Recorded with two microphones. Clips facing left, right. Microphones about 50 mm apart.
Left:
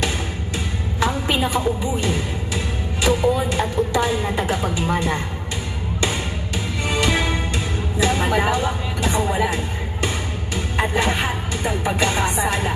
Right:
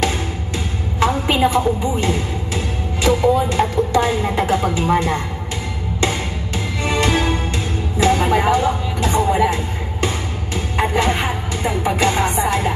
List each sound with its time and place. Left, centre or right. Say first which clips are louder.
1.3 s a woman's voice: right 4 dB; right
6.8 s music: right 3 dB; right
8.0 s speech: right 4 dB; right
10.8 s music: right 3 dB; right